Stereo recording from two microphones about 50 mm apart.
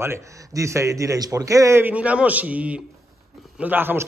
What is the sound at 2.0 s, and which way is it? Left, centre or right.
Speech, right.